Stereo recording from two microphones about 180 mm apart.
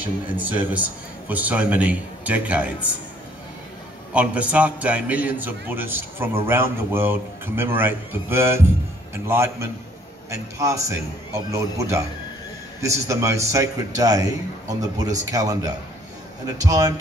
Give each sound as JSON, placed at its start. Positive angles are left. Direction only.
{"t": 0.0, "sound": "a man's voice", "side_deg": -10}
{"t": 4.1, "sound": "a man's voice", "side_deg": -5}